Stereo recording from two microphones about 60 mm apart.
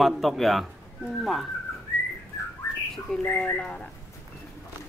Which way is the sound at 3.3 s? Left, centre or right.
Left.